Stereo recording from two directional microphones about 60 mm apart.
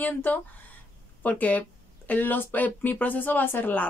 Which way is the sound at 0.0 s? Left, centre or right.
Left.